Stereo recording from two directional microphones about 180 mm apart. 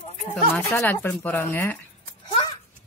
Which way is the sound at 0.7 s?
10° left (ahead or behind).